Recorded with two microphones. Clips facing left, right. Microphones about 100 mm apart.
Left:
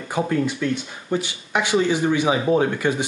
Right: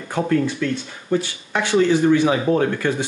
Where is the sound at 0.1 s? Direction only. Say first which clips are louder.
Right 2 dB; 10° left (ahead or behind).